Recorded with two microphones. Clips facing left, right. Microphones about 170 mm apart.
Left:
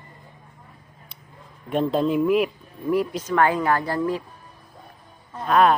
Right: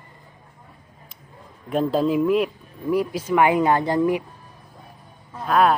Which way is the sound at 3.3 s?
15° right (ahead or behind).